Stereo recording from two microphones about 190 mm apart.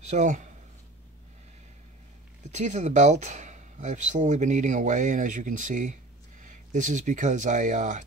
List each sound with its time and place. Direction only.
0.1 s speech: 40° right (ahead or behind)
2.5 s speech: 35° right (ahead or behind)